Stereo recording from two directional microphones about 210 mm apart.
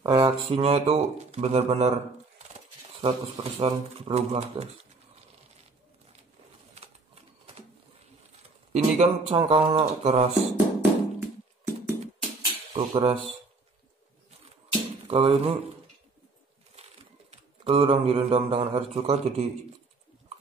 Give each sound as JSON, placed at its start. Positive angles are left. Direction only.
{"t": 0.0, "sound": "a sound", "side_deg": -20}
{"t": 0.5, "sound": "speech", "side_deg": -30}
{"t": 8.7, "sound": "speech", "side_deg": -30}
{"t": 10.8, "sound": "music", "side_deg": -10}
{"t": 12.4, "sound": "cutlery", "side_deg": -20}
{"t": 15.0, "sound": "speech", "side_deg": -30}
{"t": 17.3, "sound": "speech", "side_deg": -25}